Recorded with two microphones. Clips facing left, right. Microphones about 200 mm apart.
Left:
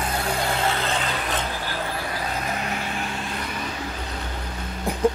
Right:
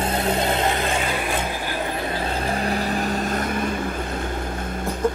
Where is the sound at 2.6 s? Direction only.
40° right (ahead or behind).